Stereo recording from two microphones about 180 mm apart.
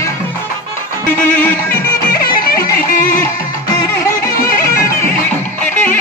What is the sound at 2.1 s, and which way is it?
Music, 50° left (ahead or behind).